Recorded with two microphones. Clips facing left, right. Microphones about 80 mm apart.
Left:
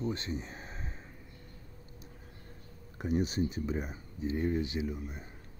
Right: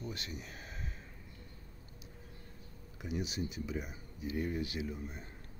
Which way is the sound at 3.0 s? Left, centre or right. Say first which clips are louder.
Left 8 dB; left.